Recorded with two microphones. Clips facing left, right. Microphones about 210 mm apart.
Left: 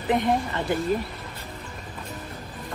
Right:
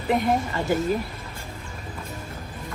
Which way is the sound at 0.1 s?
Centre (ahead or behind).